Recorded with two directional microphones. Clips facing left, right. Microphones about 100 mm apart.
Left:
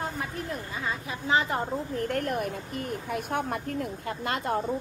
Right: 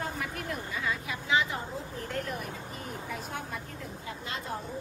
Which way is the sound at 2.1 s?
55° left (ahead or behind).